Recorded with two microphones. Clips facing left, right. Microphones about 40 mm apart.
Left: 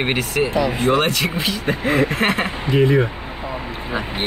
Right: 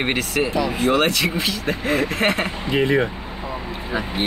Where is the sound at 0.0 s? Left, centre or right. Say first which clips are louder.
Left 1 dB; centre.